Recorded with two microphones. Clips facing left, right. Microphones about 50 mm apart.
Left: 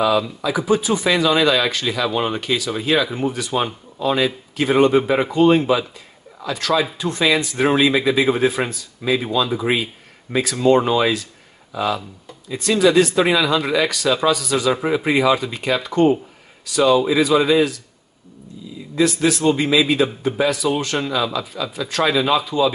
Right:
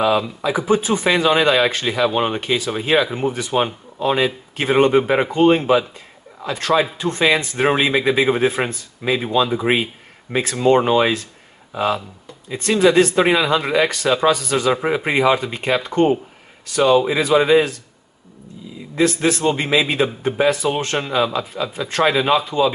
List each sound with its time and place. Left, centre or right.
0.0 s speech: right
14.7 s speech: right
18.9 s speech: right